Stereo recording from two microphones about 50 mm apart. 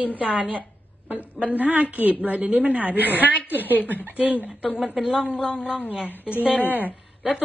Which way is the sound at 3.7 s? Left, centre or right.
Left.